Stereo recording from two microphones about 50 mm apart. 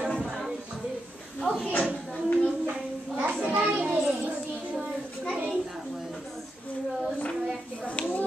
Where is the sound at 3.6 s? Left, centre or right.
Centre.